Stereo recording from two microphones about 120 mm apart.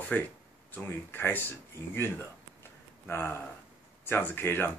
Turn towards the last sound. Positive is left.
turn(degrees=15)  # may be behind; listen again after turning